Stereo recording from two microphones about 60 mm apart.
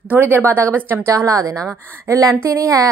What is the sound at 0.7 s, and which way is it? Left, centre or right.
Speech, right.